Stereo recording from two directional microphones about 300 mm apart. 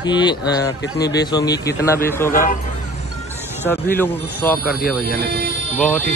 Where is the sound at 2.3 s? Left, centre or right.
Left.